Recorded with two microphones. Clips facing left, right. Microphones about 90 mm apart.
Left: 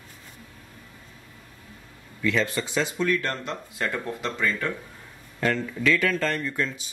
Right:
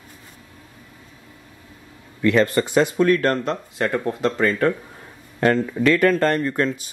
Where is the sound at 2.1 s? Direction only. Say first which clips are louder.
Right 8 dB; 55° right (ahead or behind).